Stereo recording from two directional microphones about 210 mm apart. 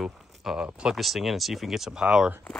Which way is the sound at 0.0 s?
Centre (ahead or behind).